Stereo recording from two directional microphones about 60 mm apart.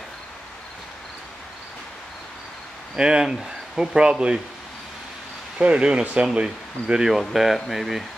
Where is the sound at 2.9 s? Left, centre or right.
Centre.